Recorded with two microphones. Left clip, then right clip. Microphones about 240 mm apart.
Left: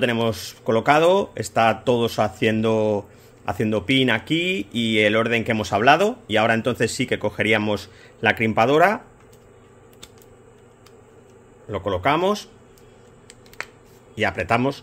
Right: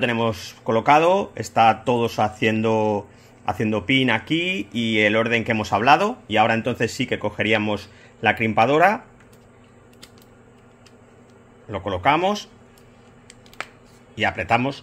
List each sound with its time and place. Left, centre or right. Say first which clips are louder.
0.0 s speech: even; left
11.7 s speech: right 1 dB; left
14.1 s speech: right 1 dB; left